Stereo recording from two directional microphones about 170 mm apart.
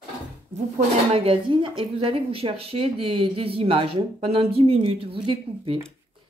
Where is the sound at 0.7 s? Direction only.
35° right (ahead or behind).